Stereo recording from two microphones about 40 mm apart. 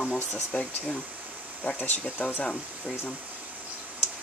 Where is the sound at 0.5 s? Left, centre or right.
Centre.